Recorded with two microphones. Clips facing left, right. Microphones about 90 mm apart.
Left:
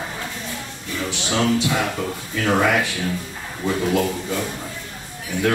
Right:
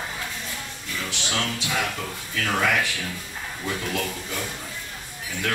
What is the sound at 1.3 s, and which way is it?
A man's voice, 15° left (ahead or behind).